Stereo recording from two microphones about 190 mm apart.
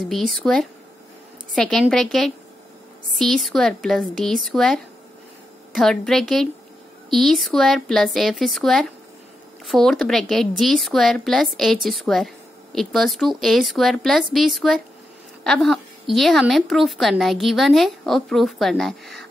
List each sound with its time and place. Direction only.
0.0 s a woman's voice: centre (ahead or behind)